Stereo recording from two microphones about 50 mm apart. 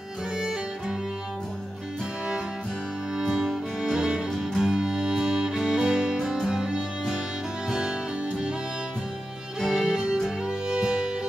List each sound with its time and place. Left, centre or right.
0.4 s music: centre
3.2 s music: centre
9.6 s music: centre